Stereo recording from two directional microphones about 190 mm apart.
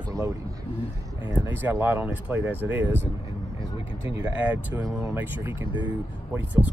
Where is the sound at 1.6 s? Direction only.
10° right (ahead or behind).